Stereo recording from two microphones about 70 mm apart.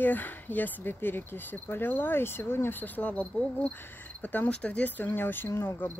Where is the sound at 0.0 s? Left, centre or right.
Left.